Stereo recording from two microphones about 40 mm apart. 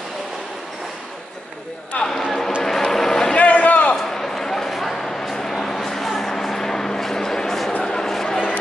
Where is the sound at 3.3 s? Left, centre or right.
Left.